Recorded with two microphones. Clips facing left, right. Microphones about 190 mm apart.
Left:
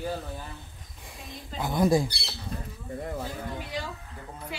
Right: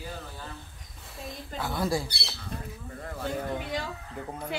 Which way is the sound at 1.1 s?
15° left (ahead or behind).